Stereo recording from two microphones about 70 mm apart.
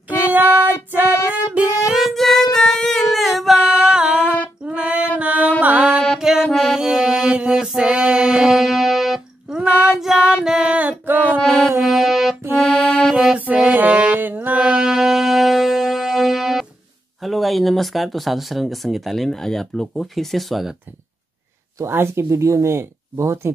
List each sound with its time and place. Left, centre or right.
0.2 s child singing: right
1.5 s music: centre
2.0 s music: centre
4.6 s female singing: centre
5.2 s mantra: right
6.1 s music: centre; by 11.3 s right
11.4 s music: centre
12.7 s music: centre
13.1 s music: centre
14.6 s music: centre
17.2 s speech: centre
21.9 s speech: right